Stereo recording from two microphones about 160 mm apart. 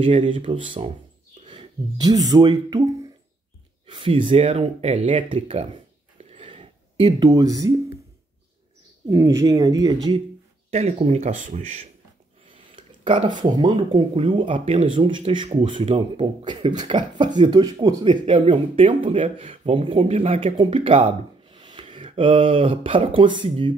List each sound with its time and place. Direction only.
0.0 s speech: 35° right (ahead or behind)
6.3 s a sound: 35° right (ahead or behind)
7.2 s speech: 20° right (ahead or behind)
9.1 s speech: 20° right (ahead or behind)
10.7 s speech: 45° right (ahead or behind)
12.4 s a sound: 30° right (ahead or behind)
13.6 s speech: 30° right (ahead or behind)